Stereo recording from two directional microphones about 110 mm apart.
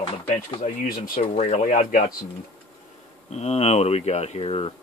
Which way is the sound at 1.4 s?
90° left.